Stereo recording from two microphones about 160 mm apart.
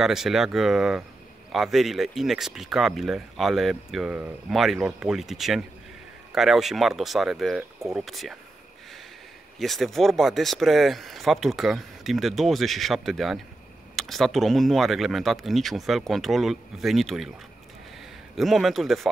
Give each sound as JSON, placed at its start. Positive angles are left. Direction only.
{"t": 0.0, "sound": "speech", "side_deg": 0}
{"t": 9.6, "sound": "speech", "side_deg": 0}
{"t": 18.3, "sound": "speech", "side_deg": 0}